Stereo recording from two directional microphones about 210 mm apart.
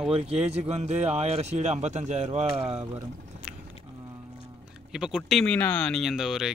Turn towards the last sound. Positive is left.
turn(degrees=0)  # may be behind; listen again after turning